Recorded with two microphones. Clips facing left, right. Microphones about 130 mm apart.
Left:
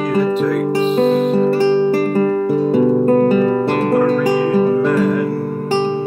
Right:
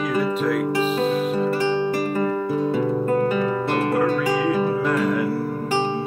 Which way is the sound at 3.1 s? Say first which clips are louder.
Left 8 dB; 40° left (ahead or behind).